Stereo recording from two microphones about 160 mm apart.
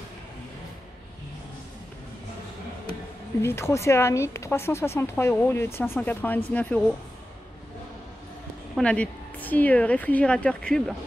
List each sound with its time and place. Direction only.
3.4 s speech: 15° left (ahead or behind)
8.7 s speech: 5° left (ahead or behind)